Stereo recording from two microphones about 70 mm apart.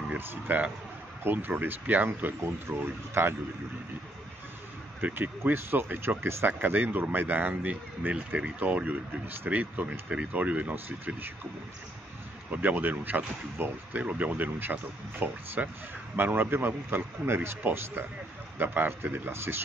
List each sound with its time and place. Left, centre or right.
0.2 s speech: right
5.0 s speech: right
12.4 s speech: right